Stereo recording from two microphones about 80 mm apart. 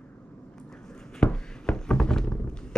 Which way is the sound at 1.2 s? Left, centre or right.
Centre.